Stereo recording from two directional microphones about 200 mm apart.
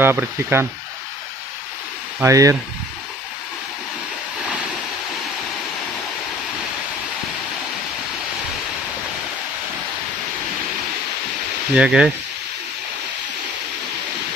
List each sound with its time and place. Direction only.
0.0 s speech: 10° right (ahead or behind)
2.1 s speech: 15° right (ahead or behind)
11.7 s speech: 5° right (ahead or behind)